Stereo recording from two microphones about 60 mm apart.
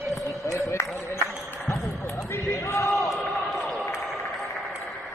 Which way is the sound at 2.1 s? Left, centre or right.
Left.